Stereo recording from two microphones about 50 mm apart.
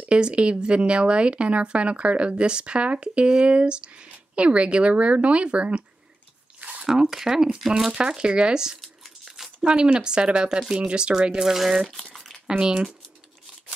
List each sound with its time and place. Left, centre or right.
0.0 s a woman's voice: right
6.6 s a sound: right
6.9 s speech: centre
8.8 s a sound: centre
9.6 s a woman's voice: centre
12.0 s crumpling: centre
12.4 s speech: centre